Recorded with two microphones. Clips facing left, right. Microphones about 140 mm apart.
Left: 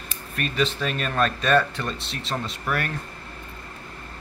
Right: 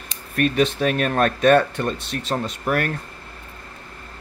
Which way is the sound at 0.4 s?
55° right (ahead or behind).